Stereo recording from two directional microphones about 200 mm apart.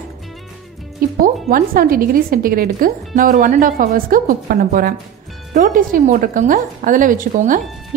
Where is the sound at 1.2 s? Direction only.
45° right (ahead or behind).